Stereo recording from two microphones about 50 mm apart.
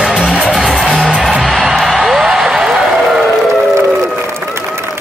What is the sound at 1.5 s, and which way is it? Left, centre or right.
Music, centre.